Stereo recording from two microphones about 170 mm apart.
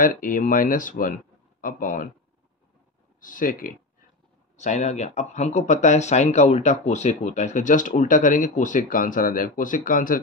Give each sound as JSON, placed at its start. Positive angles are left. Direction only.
{"t": 0.0, "sound": "speech", "side_deg": 55}
{"t": 3.2, "sound": "speech", "side_deg": 50}
{"t": 4.6, "sound": "speech", "side_deg": 45}